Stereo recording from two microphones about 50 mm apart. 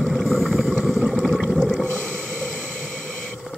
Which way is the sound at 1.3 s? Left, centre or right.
Centre.